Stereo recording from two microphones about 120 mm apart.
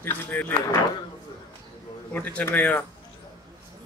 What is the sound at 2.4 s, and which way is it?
Speech, 15° left (ahead or behind).